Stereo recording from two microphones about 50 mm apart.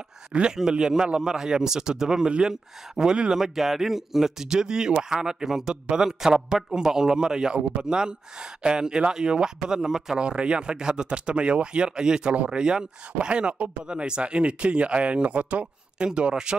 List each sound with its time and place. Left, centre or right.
0.3 s speech: right